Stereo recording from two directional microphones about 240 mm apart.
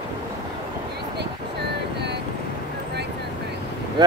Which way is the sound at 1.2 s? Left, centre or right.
Right.